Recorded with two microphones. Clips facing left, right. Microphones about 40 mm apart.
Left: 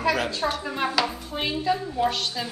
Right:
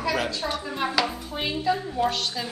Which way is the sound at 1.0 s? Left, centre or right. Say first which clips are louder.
Even; centre.